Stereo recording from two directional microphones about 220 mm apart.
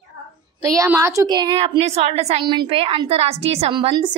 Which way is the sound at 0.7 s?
15° right (ahead or behind).